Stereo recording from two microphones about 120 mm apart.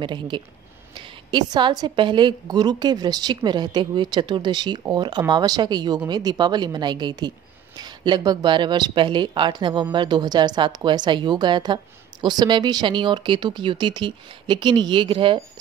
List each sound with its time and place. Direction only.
0.0 s a woman's voice: 40° right (ahead or behind)